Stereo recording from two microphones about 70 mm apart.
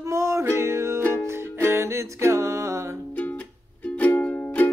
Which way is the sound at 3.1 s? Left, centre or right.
Left.